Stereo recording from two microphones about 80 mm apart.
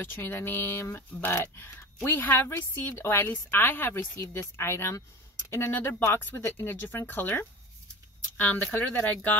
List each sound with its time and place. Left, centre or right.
0.0 s a woman's voice: left